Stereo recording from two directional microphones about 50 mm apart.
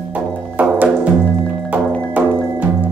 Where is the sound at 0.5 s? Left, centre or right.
Right.